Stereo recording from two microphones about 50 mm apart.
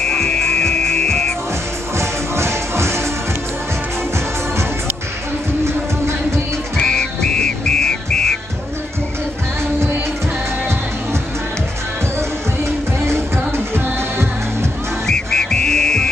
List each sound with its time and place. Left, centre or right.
0.0 s music: centre
2.0 s music: right
5.7 s music: right
6.8 s whistle: centre
13.0 s music: right
15.0 s music: centre